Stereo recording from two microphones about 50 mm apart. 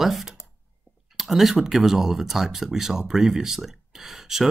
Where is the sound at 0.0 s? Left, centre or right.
Centre.